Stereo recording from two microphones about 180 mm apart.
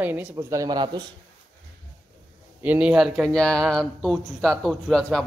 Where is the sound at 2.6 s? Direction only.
5° right (ahead or behind).